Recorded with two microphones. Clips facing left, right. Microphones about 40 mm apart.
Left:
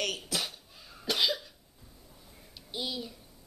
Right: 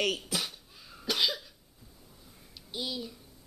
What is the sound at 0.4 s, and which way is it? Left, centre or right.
Cough, centre.